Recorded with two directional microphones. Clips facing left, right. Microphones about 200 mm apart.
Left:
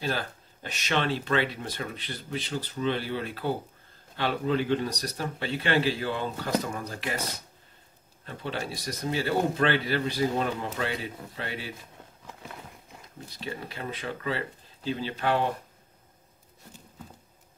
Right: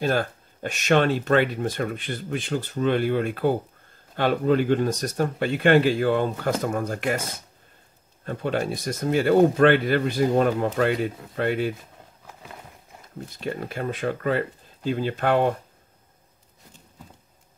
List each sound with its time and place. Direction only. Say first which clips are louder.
0.0 s speech: right 8 dB; 50° right (ahead or behind)
13.3 s speech: right 7 dB; 50° right (ahead or behind)